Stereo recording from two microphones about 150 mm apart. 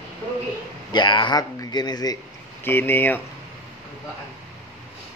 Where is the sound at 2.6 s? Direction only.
15° left (ahead or behind).